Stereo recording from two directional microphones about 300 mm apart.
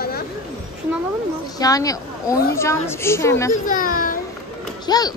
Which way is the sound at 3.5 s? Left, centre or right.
Left.